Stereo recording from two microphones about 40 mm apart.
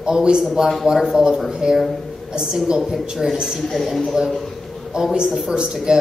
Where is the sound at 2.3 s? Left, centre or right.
Centre.